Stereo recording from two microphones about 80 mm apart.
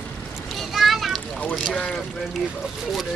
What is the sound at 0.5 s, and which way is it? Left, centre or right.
Children playing, centre.